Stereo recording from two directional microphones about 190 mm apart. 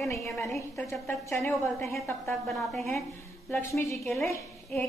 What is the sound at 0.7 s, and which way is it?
Speech, centre (ahead or behind).